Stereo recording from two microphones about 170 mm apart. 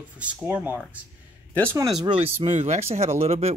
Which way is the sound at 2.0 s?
30° right (ahead or behind).